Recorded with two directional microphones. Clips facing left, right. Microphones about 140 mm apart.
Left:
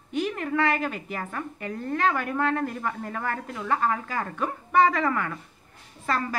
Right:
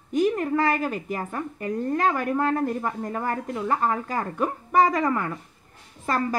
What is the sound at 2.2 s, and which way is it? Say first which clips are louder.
A woman's voice: right 2 dB; 35° right (ahead or behind).